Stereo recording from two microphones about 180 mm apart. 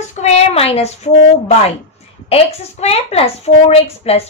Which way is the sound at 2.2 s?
35° left (ahead or behind).